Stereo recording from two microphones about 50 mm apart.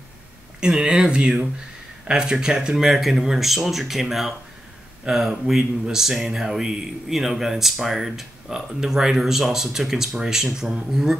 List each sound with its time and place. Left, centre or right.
0.6 s speech: centre